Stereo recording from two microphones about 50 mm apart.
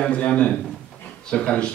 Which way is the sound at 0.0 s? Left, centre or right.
Left.